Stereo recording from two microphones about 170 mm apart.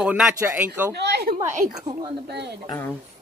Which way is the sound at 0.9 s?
80° right.